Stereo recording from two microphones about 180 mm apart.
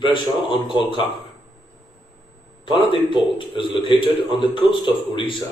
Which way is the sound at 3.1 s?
25° left (ahead or behind).